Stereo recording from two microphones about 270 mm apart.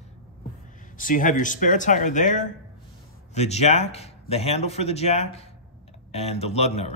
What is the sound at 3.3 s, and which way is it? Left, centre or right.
Speech, left.